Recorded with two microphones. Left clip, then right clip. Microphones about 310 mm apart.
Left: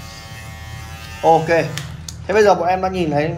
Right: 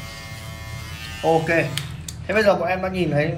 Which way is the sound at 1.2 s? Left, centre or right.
Left.